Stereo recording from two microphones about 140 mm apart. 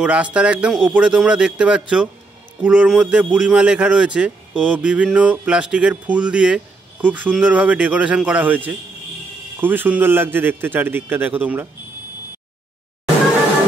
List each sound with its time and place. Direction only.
0.0 s speech: 10° right (ahead or behind)